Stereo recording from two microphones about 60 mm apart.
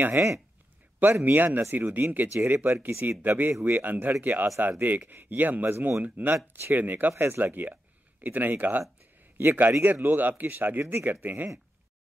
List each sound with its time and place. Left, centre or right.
1.2 s speech: right